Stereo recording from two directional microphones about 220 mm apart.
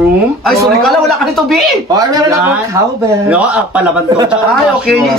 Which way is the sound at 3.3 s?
5° right (ahead or behind).